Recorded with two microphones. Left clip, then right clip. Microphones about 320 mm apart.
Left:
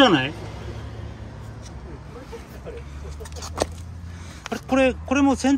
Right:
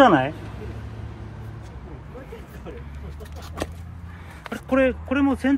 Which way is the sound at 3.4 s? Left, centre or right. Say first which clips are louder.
Left 6 dB; centre.